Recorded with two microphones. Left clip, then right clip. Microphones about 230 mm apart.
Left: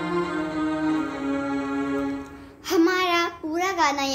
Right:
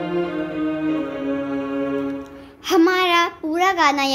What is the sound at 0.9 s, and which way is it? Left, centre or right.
Music, centre.